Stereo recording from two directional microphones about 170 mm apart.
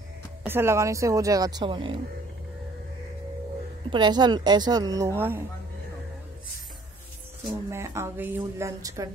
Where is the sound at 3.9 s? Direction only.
25° right (ahead or behind).